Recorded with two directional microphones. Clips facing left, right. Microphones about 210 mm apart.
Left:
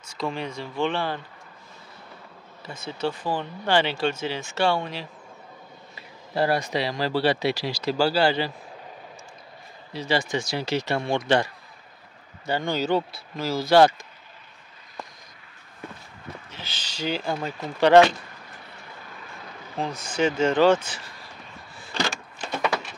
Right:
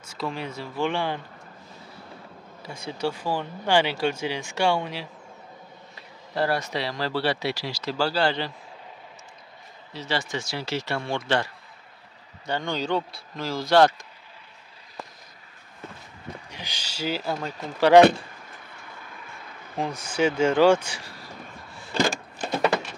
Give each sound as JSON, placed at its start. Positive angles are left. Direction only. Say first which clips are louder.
{"t": 0.1, "sound": "speech", "louder": "left 2 dB", "side_deg": -5}
{"t": 2.6, "sound": "speech", "louder": "even", "side_deg": -10}
{"t": 5.9, "sound": "speech", "louder": "left 2 dB", "side_deg": 15}
{"t": 9.9, "sound": "speech", "louder": "left 4 dB", "side_deg": 15}
{"t": 12.4, "sound": "speech", "louder": "left 3 dB", "side_deg": 5}
{"t": 16.4, "sound": "speech", "louder": "right 1 dB", "side_deg": -15}
{"t": 19.8, "sound": "speech", "louder": "even", "side_deg": -10}